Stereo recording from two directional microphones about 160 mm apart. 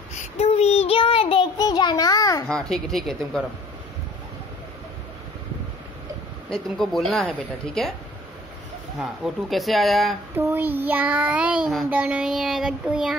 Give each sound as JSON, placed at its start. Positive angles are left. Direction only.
{"t": 0.4, "sound": "child singing", "side_deg": 40}
{"t": 2.4, "sound": "a woman's voice", "side_deg": 5}
{"t": 6.5, "sound": "a woman's voice", "side_deg": 0}
{"t": 9.0, "sound": "a woman's voice", "side_deg": 0}
{"t": 10.3, "sound": "child singing", "side_deg": -15}